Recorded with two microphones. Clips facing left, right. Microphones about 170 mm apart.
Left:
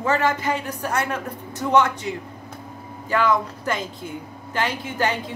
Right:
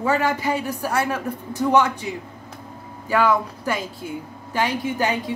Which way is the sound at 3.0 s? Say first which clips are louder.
Right 1 dB; 10° right (ahead or behind).